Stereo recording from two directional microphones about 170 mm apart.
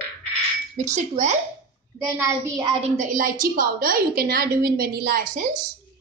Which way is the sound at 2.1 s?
15° right (ahead or behind).